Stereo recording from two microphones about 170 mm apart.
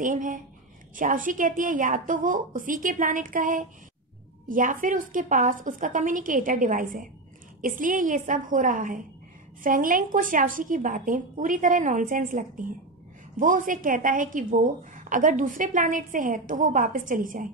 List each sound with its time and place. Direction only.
0.0 s a woman's voice: 50° right (ahead or behind)